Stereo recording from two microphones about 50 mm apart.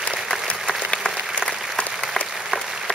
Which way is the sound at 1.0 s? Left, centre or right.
Centre.